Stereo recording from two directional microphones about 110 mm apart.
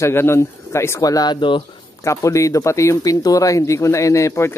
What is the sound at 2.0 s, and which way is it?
Speech, 30° left (ahead or behind).